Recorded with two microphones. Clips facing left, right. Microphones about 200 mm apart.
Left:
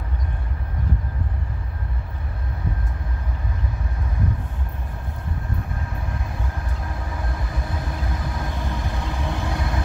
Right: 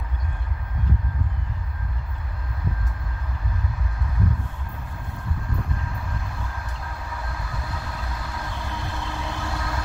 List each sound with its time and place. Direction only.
7.7 s vehicle: 20° left (ahead or behind)